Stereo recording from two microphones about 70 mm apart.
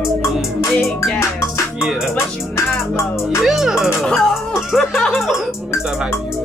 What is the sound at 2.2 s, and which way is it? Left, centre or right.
Music, left.